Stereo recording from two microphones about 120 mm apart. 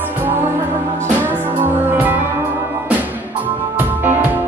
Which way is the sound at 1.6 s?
15° right (ahead or behind).